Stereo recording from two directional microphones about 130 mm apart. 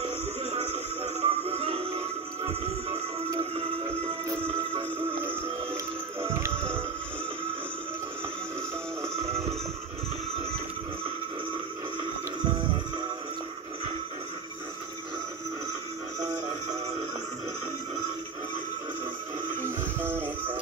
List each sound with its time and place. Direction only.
0.0 s music: 55° right (ahead or behind)
9.2 s music: 50° right (ahead or behind)
19.6 s music: 15° right (ahead or behind)